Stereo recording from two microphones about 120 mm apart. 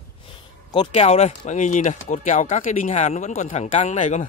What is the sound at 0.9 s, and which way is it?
Speech, 60° left (ahead or behind).